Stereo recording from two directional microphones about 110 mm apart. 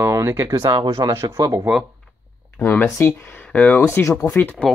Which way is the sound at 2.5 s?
15° left (ahead or behind).